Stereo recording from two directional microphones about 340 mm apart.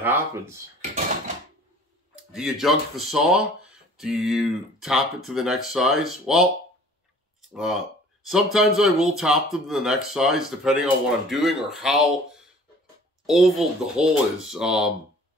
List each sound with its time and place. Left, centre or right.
0.0 s speech: centre
0.7 s a sound: right
2.1 s speech: centre
7.4 s speech: centre